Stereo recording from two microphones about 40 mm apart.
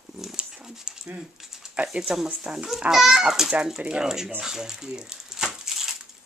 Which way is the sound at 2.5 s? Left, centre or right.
Centre.